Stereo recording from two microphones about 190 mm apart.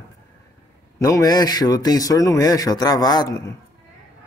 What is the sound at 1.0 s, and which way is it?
Speech, 20° left (ahead or behind).